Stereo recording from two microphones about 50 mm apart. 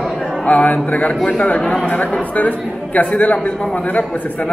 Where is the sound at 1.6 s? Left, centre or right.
Centre.